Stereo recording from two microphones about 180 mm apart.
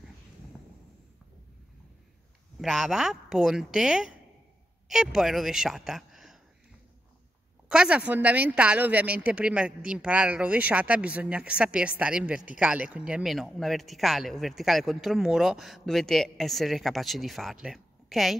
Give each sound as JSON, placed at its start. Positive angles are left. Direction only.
{"t": 2.6, "sound": "a man's voice", "side_deg": 0}
{"t": 7.6, "sound": "a woman's voice", "side_deg": -5}